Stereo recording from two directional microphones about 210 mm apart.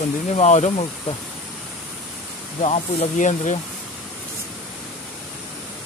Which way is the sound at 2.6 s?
30° left (ahead or behind).